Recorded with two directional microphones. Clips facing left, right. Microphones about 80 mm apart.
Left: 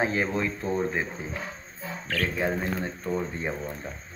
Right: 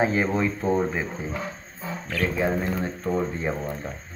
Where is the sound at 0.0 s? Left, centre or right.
Centre.